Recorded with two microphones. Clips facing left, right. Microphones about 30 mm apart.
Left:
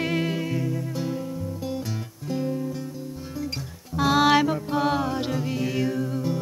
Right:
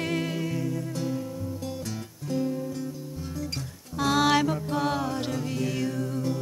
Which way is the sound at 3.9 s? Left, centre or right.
Centre.